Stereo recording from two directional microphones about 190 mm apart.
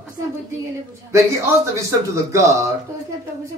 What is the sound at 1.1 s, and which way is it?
Speech, 15° right (ahead or behind).